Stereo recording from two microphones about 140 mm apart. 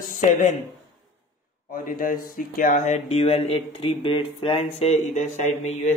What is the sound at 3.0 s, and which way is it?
Speech, 45° left (ahead or behind).